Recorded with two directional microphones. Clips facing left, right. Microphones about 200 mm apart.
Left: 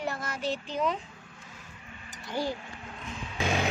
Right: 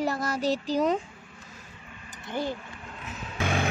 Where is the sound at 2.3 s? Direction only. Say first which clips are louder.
Right 1 dB; 20° right (ahead or behind).